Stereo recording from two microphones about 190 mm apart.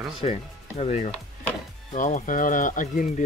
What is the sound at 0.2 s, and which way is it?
Speech, 30° left (ahead or behind).